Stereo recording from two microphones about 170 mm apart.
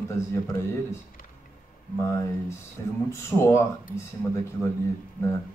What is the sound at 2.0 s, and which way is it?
A man's voice, 15° left (ahead or behind).